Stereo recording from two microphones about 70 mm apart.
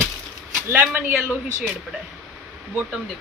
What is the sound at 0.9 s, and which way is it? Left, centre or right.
Speech, right.